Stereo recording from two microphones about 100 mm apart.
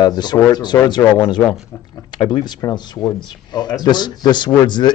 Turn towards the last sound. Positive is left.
turn(degrees=50)  # may be behind; listen again after turning